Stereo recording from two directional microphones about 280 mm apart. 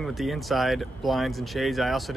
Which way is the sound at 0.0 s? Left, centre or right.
Centre.